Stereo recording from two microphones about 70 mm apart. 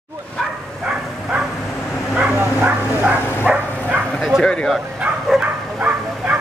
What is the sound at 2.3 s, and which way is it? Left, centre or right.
Bow-wow, right.